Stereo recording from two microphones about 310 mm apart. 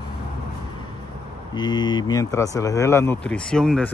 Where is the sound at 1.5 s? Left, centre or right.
Centre.